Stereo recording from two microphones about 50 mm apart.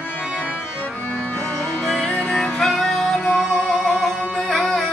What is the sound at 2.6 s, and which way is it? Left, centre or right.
Music, centre.